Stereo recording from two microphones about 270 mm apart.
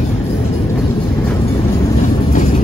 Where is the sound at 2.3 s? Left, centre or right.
Left.